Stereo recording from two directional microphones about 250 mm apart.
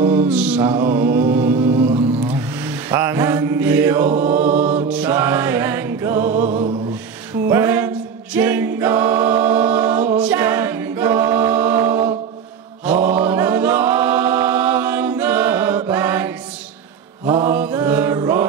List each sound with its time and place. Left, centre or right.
0.3 s mantra: centre
0.6 s mantra: centre
1.4 s a sound: centre
4.1 s a capella: right
4.4 s music: centre
6.2 s music: right
7.4 s choir: centre
12.8 s a capella: centre
17.3 s mantra: centre